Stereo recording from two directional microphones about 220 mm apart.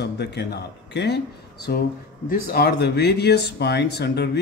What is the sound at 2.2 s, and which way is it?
Speech, 45° left (ahead or behind).